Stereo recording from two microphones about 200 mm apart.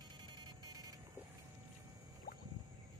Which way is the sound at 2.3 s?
50° left (ahead or behind).